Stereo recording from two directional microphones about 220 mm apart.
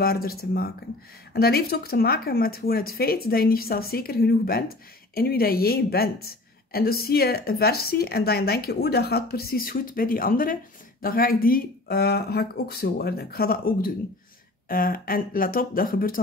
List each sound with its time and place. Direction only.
0.0 s speech: 40° left (ahead or behind)